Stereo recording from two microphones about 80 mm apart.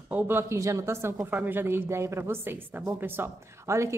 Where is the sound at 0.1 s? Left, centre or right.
Right.